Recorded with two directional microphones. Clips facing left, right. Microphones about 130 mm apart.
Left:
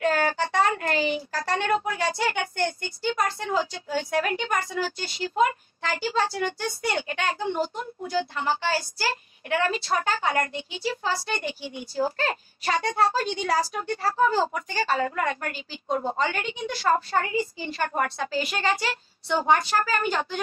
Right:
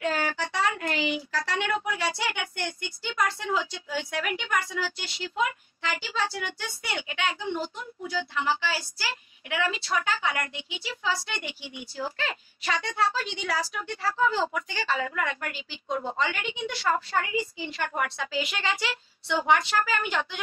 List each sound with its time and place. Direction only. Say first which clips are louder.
0.0 s child singing: left 5 dB; 50° left (ahead or behind)
1.3 s a woman's voice: left 4 dB; 45° left (ahead or behind)